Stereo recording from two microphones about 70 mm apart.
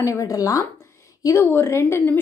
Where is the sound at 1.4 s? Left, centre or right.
Left.